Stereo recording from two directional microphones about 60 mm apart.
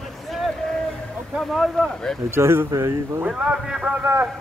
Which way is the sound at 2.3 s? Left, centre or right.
Right.